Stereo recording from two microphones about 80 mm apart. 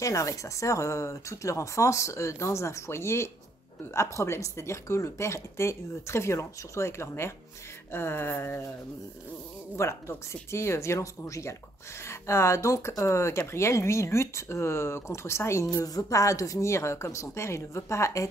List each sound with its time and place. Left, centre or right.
0.0 s speech: left
9.8 s speech: left